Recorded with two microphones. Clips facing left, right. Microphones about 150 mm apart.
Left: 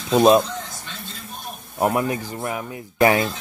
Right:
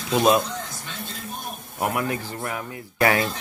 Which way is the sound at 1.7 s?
30° left (ahead or behind).